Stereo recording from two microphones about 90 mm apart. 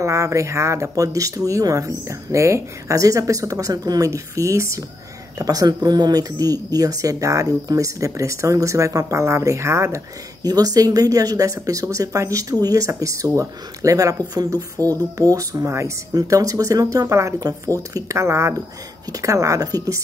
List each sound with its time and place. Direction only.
0.0 s speech: 35° right (ahead or behind)
10.4 s speech: 45° right (ahead or behind)